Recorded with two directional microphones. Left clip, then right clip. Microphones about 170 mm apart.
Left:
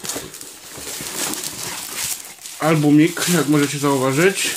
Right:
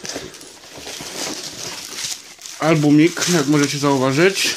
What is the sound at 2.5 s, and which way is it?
Speech, 45° right (ahead or behind).